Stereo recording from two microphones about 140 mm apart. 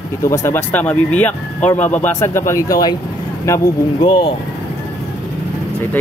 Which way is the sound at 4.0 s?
40° left (ahead or behind).